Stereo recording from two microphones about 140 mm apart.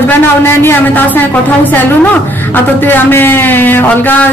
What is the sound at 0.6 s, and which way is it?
Speech, 15° left (ahead or behind).